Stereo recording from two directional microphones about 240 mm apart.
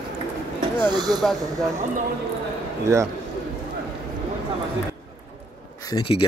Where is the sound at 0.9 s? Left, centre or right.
Centre.